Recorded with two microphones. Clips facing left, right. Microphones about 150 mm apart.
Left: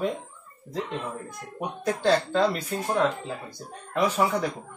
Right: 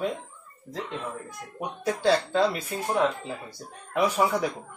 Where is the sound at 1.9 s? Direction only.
10° right (ahead or behind).